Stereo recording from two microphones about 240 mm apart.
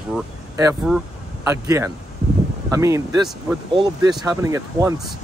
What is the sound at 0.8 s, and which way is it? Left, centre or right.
Speech, centre.